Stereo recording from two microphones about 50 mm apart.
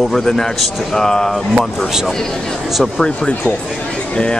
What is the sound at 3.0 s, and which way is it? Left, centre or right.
Speech, centre.